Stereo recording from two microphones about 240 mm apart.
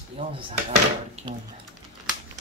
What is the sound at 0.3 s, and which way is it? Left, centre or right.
Speech, right.